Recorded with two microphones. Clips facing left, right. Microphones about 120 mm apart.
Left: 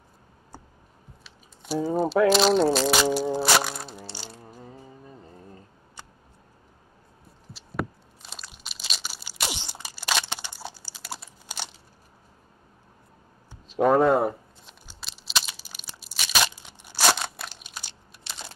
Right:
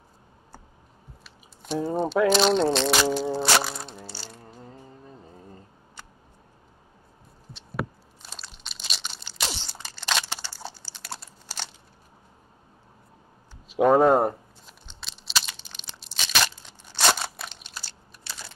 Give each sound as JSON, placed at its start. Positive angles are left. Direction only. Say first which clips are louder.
{"t": 1.2, "sound": "crunch", "louder": "even", "side_deg": 0}
{"t": 4.4, "sound": "music", "louder": "left 1 dB", "side_deg": 5}
{"t": 5.2, "sound": "insect", "louder": "even", "side_deg": 0}
{"t": 8.3, "sound": "crunch", "louder": "even", "side_deg": 5}
{"t": 10.4, "sound": "typing", "louder": "even", "side_deg": 10}
{"t": 11.4, "sound": "a sound", "louder": "left 1 dB", "side_deg": 15}
{"t": 13.7, "sound": "a sound", "louder": "right 1 dB", "side_deg": -5}
{"t": 16.0, "sound": "crunch", "louder": "even", "side_deg": 5}
{"t": 16.5, "sound": "crumpling", "louder": "left 1 dB", "side_deg": 10}
{"t": 17.8, "sound": "computer keyboard", "louder": "even", "side_deg": 20}